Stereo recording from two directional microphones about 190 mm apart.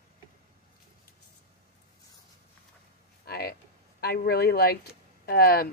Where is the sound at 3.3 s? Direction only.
55° left (ahead or behind).